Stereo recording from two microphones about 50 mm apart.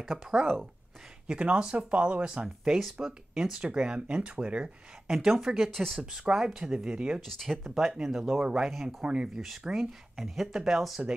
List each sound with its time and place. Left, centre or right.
0.3 s speech: centre
1.2 s speech: right
2.4 s speech: centre
5.0 s speech: centre
5.7 s speech: centre
6.3 s speech: centre
7.2 s speech: centre
7.5 s speech: centre
9.3 s speech: centre